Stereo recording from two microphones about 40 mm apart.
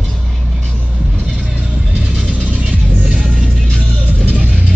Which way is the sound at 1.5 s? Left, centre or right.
Right.